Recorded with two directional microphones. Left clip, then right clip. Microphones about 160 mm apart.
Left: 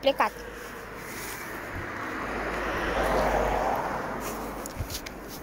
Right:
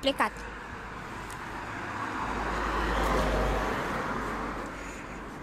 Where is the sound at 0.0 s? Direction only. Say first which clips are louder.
Left 3 dB; 10° right (ahead or behind).